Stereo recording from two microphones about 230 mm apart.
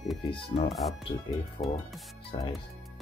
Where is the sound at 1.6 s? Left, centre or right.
Left.